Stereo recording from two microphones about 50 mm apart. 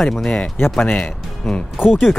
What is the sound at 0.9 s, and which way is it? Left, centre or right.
Speech, left.